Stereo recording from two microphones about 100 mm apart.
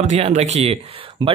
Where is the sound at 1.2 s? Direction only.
55° right (ahead or behind).